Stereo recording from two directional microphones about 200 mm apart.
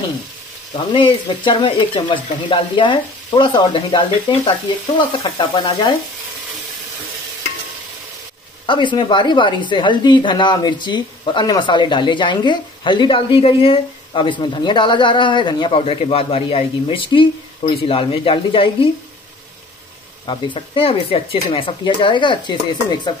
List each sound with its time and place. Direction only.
0.9 s speech: 25° left (ahead or behind)
8.6 s speech: 25° left (ahead or behind)
20.2 s speech: 25° left (ahead or behind)